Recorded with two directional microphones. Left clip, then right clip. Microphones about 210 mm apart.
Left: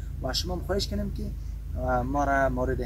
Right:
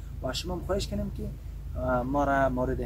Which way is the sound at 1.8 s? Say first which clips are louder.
Even; centre (ahead or behind).